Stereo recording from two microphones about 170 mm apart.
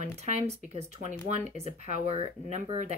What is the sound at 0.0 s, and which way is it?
Speech, 40° right (ahead or behind).